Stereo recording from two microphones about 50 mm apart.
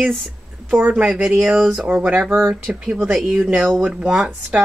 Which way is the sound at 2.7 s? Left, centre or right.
Centre.